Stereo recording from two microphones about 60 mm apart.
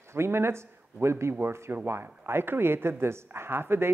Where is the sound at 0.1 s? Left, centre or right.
Right.